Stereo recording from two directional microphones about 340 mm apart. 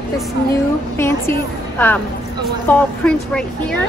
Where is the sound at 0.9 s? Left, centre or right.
Centre.